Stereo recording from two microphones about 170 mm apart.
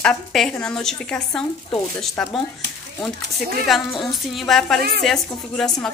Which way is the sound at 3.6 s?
Centre (ahead or behind).